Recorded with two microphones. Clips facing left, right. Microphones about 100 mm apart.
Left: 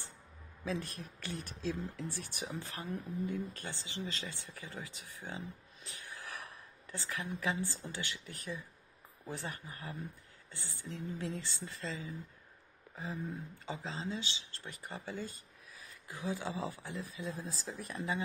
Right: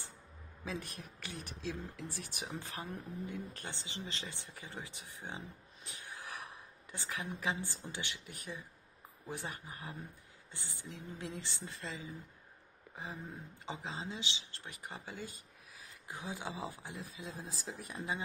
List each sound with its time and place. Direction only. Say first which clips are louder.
0.7 s speech: left 4 dB; 15° right (ahead or behind)